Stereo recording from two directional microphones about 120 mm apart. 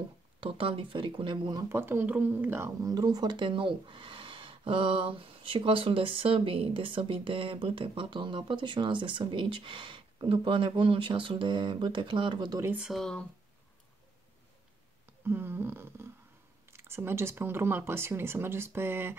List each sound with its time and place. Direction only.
0.4 s speech: 45° right (ahead or behind)
1.7 s speech: 20° right (ahead or behind); by 12.5 s 40° right (ahead or behind)
12.7 s speech: centre (ahead or behind)
15.2 s a sound: 15° right (ahead or behind)
16.7 s speech: 20° right (ahead or behind)